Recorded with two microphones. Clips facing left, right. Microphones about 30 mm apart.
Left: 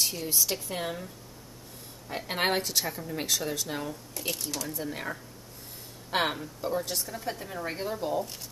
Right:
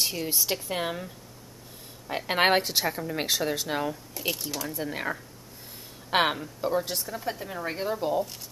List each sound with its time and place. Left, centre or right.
0.0 s a woman's voice: centre
4.1 s speech: centre